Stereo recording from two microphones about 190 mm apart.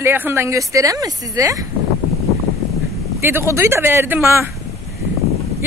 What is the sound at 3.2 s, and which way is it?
Speech, 10° right (ahead or behind).